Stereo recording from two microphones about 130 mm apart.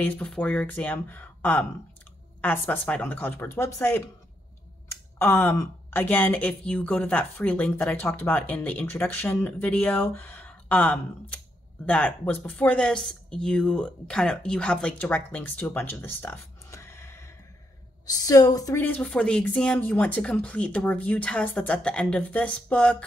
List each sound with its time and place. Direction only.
0.0 s a woman's voice: 10° left (ahead or behind); by 18.8 s 30° left (ahead or behind)
18.8 s speech: 10° left (ahead or behind)